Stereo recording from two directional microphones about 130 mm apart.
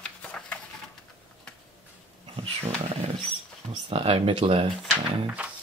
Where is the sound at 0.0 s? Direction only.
10° left (ahead or behind).